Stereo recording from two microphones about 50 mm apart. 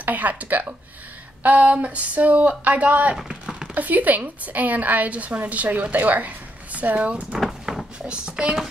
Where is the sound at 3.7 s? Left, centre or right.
Right.